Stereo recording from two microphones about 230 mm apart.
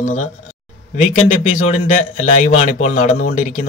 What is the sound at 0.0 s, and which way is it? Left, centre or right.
Speech, left.